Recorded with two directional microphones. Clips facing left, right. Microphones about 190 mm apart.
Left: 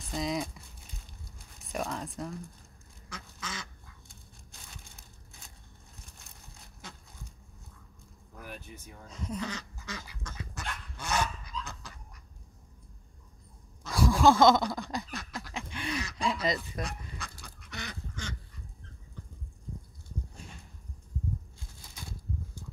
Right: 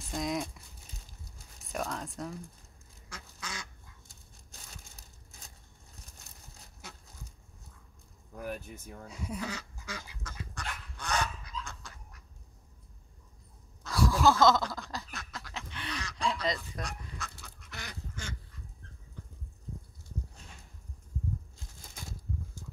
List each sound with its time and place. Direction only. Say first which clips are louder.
0.0 s speech: left 1 dB; centre (ahead or behind)
1.7 s speech: left 1 dB; centre (ahead or behind)
3.1 s duck: left 2 dB; 10° right (ahead or behind)
9.0 s duck: left 2 dB; 10° right (ahead or behind)
10.5 s goose: left 1 dB; 5° left (ahead or behind)
13.8 s a sound: left 3 dB; 15° left (ahead or behind)
17.2 s duck: even; centre (ahead or behind)